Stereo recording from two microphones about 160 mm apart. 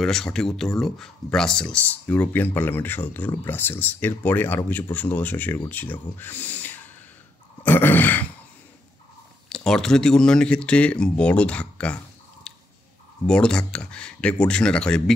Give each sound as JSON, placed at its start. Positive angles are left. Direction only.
{"t": 0.0, "sound": "speech", "side_deg": 5}
{"t": 7.6, "sound": "a sound", "side_deg": 10}
{"t": 9.7, "sound": "speech", "side_deg": 5}
{"t": 12.5, "sound": "squish", "side_deg": 5}
{"t": 13.3, "sound": "speech", "side_deg": 5}